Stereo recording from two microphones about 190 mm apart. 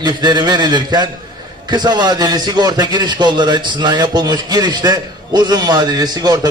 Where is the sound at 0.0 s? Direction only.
20° right (ahead or behind).